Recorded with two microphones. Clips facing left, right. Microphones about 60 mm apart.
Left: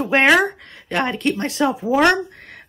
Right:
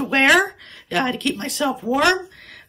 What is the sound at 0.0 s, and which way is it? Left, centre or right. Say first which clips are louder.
Speech: left 1 dB; centre.